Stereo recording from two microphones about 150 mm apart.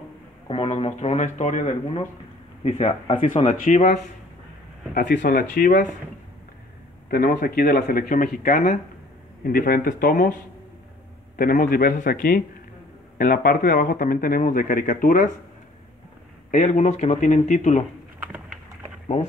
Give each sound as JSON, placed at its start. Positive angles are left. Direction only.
{"t": 0.5, "sound": "speech", "side_deg": 40}
{"t": 3.2, "sound": "speech", "side_deg": 60}
{"t": 7.1, "sound": "speech", "side_deg": 80}
{"t": 16.4, "sound": "speech", "side_deg": 55}